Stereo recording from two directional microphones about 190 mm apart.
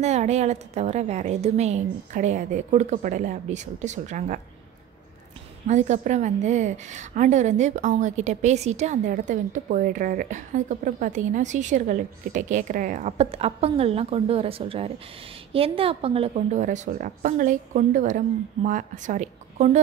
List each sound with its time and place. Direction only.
0.0 s a woman's voice: 35° right (ahead or behind)
5.7 s a woman's voice: 40° right (ahead or behind)